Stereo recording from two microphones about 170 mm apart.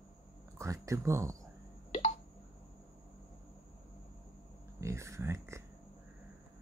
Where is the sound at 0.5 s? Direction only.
20° right (ahead or behind).